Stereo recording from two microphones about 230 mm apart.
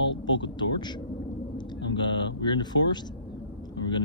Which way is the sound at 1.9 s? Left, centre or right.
Centre.